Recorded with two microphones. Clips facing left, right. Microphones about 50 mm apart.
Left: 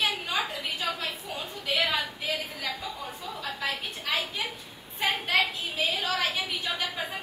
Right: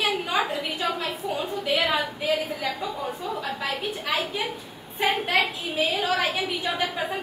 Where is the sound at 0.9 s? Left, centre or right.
Centre.